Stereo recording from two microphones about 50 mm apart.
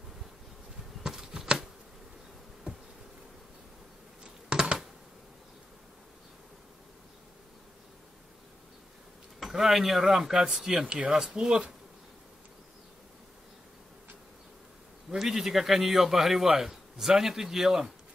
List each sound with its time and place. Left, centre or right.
1.1 s shuffling cards: centre
4.2 s computer keyboard: centre
9.4 s a man's voice: centre
15.0 s a man's voice: centre